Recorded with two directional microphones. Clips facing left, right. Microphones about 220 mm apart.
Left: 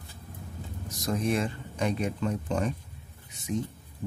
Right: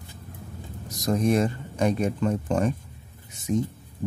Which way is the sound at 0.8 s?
40° right (ahead or behind).